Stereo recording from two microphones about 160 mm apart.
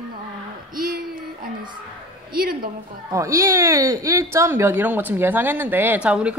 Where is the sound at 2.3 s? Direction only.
65° right (ahead or behind).